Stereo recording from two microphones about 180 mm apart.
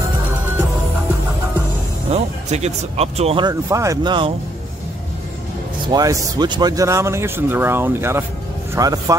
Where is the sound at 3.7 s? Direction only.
15° right (ahead or behind).